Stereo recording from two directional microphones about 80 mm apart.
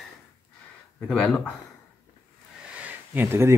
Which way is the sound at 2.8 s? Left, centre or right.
Right.